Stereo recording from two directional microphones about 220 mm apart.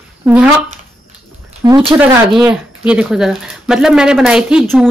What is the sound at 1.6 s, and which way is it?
Speech, 20° right (ahead or behind).